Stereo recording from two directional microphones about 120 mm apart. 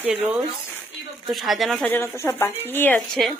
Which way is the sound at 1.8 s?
20° left (ahead or behind).